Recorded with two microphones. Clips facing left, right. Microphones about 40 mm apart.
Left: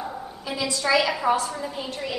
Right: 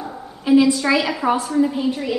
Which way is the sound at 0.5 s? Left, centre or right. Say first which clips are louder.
Right 9 dB; right.